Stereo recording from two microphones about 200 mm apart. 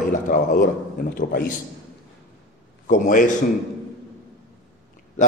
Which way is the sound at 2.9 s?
40° left (ahead or behind).